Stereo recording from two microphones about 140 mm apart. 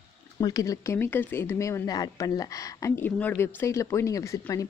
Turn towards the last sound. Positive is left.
turn(degrees=25)  # may be behind; listen again after turning